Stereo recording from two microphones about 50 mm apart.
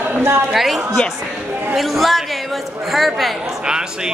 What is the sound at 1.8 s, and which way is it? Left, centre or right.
A man's voice, centre.